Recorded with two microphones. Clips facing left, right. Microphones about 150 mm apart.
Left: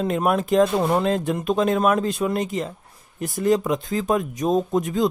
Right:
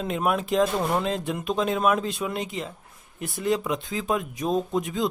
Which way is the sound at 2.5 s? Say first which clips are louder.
Left 6 dB; 45° left (ahead or behind).